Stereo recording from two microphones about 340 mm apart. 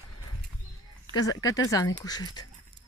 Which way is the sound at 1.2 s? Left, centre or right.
Centre.